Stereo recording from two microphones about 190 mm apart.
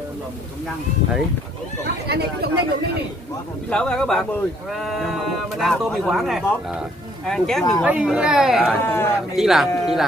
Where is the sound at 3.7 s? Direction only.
5° left (ahead or behind).